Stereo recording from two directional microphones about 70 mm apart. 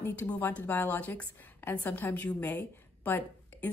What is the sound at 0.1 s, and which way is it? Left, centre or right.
A woman's voice, left.